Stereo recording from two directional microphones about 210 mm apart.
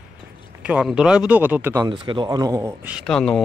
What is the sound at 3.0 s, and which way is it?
Speech, 5° left (ahead or behind).